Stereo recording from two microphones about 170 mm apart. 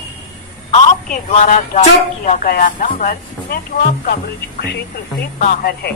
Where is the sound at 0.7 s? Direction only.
45° left (ahead or behind).